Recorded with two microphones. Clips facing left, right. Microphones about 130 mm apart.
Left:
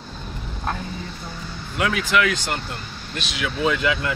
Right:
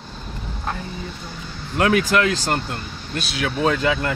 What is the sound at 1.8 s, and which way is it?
Speech, 50° right (ahead or behind).